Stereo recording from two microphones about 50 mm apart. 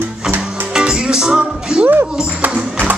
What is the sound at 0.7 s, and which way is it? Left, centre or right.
Music, centre.